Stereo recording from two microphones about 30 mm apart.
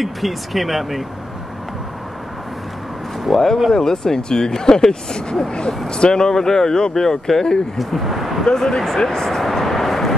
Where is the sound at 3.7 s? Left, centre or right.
Centre.